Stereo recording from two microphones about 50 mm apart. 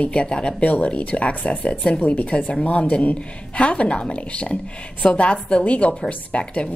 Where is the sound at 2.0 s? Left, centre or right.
Left.